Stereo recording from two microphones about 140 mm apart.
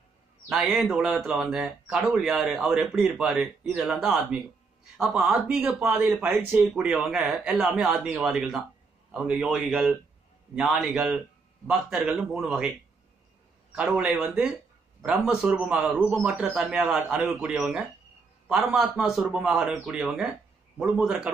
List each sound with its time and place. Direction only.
0.5 s a man's voice: 5° right (ahead or behind)
13.7 s a man's voice: 5° right (ahead or behind)